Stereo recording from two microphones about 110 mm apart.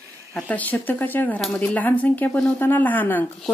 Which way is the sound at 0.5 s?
15° left (ahead or behind).